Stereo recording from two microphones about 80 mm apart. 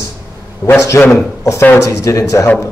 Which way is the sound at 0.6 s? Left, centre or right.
Left.